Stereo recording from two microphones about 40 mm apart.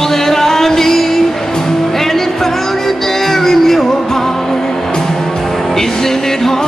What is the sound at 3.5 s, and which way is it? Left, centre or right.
Music, centre.